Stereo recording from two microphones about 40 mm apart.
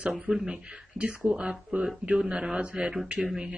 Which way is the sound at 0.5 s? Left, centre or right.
Right.